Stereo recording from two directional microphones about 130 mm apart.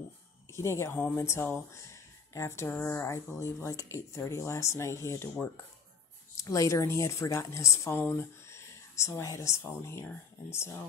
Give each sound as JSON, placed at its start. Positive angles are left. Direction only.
{"t": 0.5, "sound": "speech", "side_deg": 20}